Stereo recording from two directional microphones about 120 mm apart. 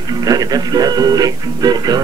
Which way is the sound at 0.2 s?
30° right (ahead or behind).